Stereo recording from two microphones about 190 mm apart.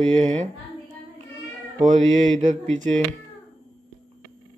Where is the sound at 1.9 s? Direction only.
40° right (ahead or behind).